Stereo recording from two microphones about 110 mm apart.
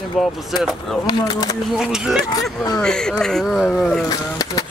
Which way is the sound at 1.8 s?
5° right (ahead or behind).